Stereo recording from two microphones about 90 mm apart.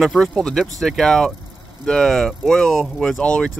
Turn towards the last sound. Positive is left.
turn(degrees=10)  # may be behind; listen again after turning